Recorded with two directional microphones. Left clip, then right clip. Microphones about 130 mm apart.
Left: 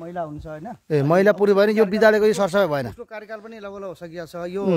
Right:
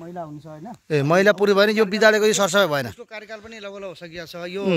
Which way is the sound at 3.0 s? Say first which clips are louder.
Left 2 dB; 60° left (ahead or behind).